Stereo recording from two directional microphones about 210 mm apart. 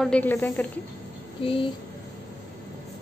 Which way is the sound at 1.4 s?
25° left (ahead or behind).